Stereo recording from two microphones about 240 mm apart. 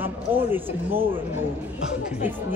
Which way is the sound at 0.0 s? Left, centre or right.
Centre.